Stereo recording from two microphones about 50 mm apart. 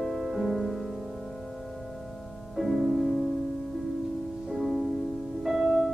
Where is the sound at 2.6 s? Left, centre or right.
Centre.